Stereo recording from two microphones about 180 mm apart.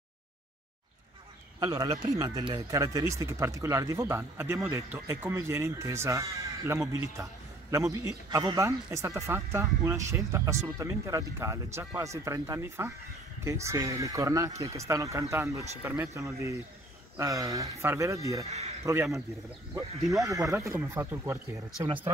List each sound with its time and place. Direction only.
1.6 s speech: 20° right (ahead or behind)
18.5 s speech: 40° right (ahead or behind)
20.2 s speech: 20° right (ahead or behind)